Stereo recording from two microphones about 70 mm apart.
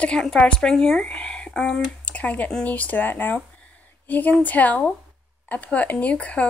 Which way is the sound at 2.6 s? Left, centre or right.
Left.